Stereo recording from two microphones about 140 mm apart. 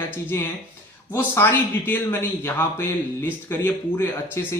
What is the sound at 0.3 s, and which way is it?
A man's voice, 20° left (ahead or behind).